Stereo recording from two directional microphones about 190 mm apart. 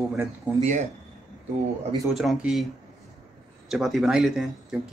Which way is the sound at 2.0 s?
Centre (ahead or behind).